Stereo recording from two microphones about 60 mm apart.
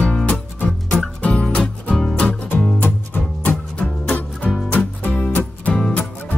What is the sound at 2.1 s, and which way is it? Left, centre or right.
Music, left.